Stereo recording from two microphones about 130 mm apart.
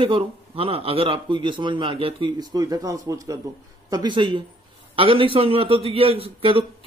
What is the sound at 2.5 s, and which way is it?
A man's voice, 30° right (ahead or behind).